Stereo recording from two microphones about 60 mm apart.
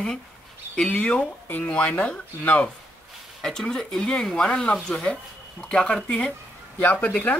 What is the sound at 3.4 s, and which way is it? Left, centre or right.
Speech, centre.